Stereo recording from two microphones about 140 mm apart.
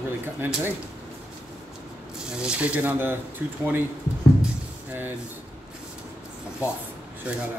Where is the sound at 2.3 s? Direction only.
5° right (ahead or behind).